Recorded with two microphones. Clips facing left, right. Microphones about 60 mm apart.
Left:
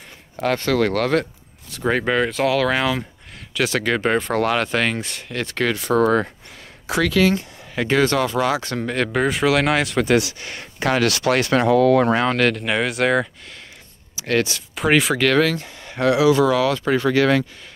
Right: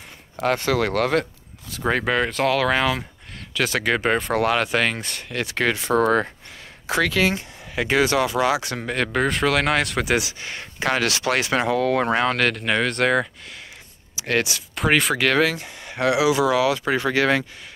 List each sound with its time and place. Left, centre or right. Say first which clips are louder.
0.4 s speech: left 2 dB; centre
5.6 s speech: left 2 dB; right
7.2 s speech: left 4 dB; centre
7.7 s speech: left 1 dB; centre
10.0 s speech: left 4 dB; centre
12.2 s speech: left 2 dB; centre; by 17.5 s right